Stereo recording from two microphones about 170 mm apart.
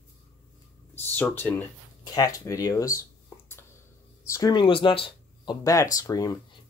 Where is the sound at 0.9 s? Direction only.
10° left (ahead or behind).